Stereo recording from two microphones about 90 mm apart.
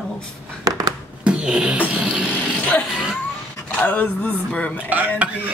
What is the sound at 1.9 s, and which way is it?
Speech, 10° right (ahead or behind).